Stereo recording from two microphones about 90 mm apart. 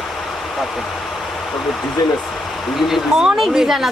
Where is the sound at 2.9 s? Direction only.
5° right (ahead or behind).